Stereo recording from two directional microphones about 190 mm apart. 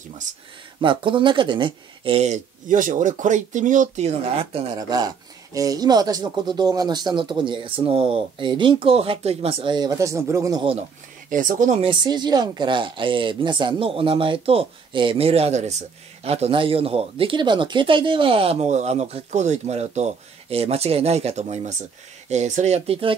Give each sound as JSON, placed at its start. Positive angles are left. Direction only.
{"t": 0.3, "sound": "speech", "side_deg": -40}
{"t": 0.7, "sound": "speech", "side_deg": -25}
{"t": 4.7, "sound": "speech", "side_deg": -20}
{"t": 11.2, "sound": "speech", "side_deg": -45}
{"t": 11.8, "sound": "speech", "side_deg": -25}